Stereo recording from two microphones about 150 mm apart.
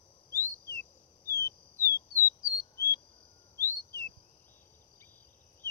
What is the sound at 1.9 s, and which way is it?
Bird, 20° left (ahead or behind).